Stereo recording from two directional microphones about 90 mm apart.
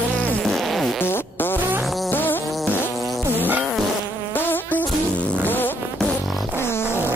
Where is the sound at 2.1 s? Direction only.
20° left (ahead or behind).